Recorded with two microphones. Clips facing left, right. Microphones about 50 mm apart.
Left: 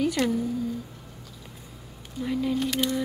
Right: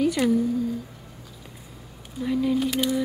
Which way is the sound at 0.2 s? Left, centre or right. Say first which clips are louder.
Right 3 dB; centre.